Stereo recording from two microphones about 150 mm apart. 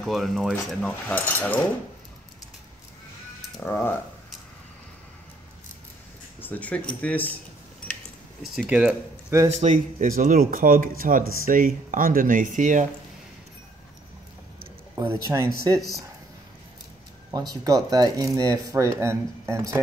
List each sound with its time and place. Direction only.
0.0 s speech: centre (ahead or behind)
3.6 s speech: 15° left (ahead or behind)
6.4 s speech: 10° left (ahead or behind)
8.4 s speech: 5° right (ahead or behind)
9.5 s speech: 50° right (ahead or behind)
15.0 s speech: 20° right (ahead or behind)
17.3 s speech: 25° right (ahead or behind)